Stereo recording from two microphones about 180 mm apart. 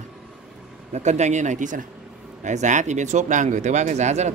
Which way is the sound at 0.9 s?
40° right (ahead or behind).